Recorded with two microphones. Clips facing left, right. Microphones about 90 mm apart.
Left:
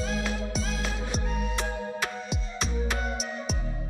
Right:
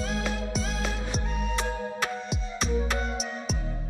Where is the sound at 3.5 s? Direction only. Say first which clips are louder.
Right 1 dB; centre (ahead or behind).